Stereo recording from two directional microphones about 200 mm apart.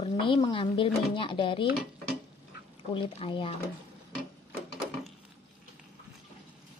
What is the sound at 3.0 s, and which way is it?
Speech, 25° left (ahead or behind).